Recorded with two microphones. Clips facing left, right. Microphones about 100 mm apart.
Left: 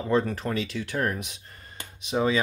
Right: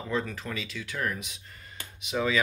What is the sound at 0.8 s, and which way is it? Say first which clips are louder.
Speech: left 4 dB; 40° left (ahead or behind).